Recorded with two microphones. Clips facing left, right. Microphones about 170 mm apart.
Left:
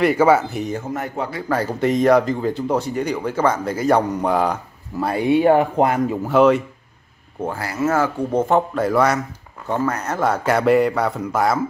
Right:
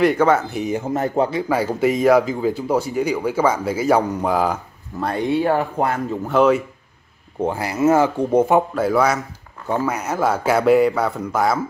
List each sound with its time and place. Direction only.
0.0 s speech: 5° left (ahead or behind)
0.7 s speech: 25° right (ahead or behind)
1.8 s speech: 5° right (ahead or behind); by 6.1 s 15° left (ahead or behind)
6.2 s speech: centre (ahead or behind)
7.4 s speech: 20° right (ahead or behind); by 11.6 s centre (ahead or behind)